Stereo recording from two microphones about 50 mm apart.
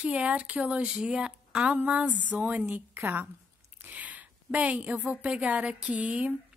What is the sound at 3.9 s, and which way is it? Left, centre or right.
A woman's voice, right.